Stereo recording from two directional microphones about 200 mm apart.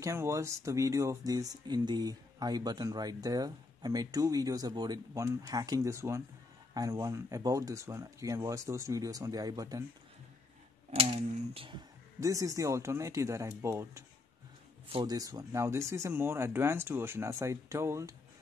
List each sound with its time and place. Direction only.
0.0 s speech: 15° right (ahead or behind)
11.0 s speech: 30° right (ahead or behind)